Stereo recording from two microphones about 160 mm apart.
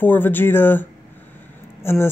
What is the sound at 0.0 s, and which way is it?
Speech, 10° left (ahead or behind).